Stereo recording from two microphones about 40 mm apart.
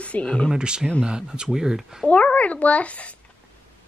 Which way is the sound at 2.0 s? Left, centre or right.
Left.